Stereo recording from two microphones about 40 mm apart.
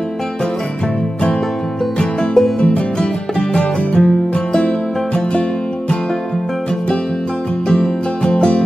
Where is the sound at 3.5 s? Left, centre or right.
Left.